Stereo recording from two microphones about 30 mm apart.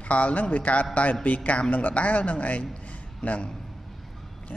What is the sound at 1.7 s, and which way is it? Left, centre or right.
Speech, left.